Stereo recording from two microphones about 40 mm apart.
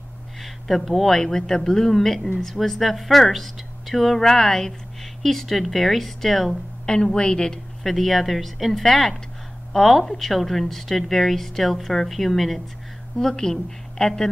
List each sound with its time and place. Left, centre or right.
0.4 s speech: centre
1.1 s a woman's voice: centre
6.9 s speech: centre
7.8 s a woman's voice: centre